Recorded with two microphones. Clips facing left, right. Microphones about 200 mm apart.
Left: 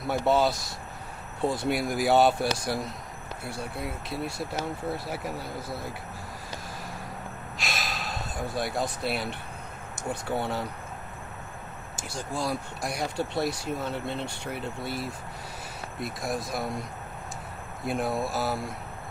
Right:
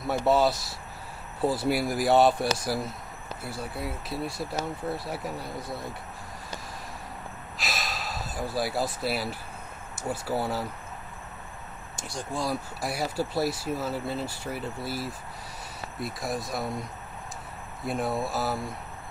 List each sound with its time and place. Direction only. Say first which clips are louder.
0.0 s speech: right 1 dB; centre (ahead or behind)
7.5 s gasp: even; centre (ahead or behind)
9.9 s speech: right 1 dB; 5° right (ahead or behind)
12.0 s speech: even; centre (ahead or behind)
17.8 s speech: even; centre (ahead or behind)